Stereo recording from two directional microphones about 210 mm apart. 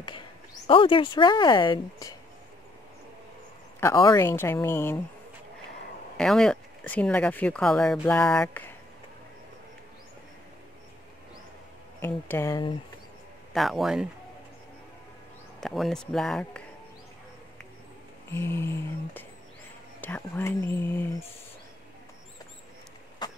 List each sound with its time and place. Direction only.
0.7 s speech: 25° left (ahead or behind)
3.8 s a woman's voice: 15° left (ahead or behind)
6.1 s speech: 5° left (ahead or behind)
12.0 s a woman's voice: 10° left (ahead or behind)
13.5 s speech: centre (ahead or behind)
15.6 s speech: centre (ahead or behind)
18.3 s a woman's voice: 10° left (ahead or behind)
23.2 s cough: 20° left (ahead or behind)